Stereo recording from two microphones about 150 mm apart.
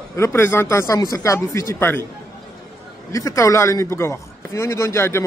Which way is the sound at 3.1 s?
20° left (ahead or behind).